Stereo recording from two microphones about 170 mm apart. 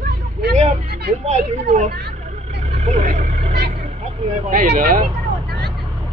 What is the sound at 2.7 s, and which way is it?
Vehicle, 40° right (ahead or behind).